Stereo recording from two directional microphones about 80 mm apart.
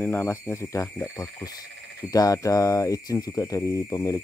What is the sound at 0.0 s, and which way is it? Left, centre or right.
Speech, left.